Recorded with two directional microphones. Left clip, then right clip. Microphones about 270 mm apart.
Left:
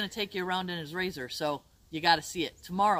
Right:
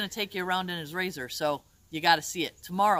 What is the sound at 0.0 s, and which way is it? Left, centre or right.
Speech, centre.